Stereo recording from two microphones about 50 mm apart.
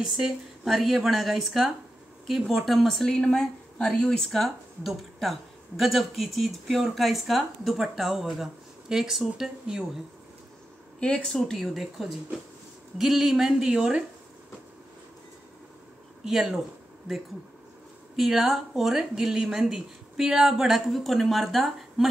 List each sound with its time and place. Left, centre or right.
0.7 s speech: centre
3.0 s speech: centre
11.0 s speech: left
11.2 s speech: centre
11.6 s speech: centre
16.3 s speech: centre
18.1 s speech: centre